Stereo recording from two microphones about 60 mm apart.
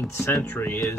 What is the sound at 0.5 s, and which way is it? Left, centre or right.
Speech, left.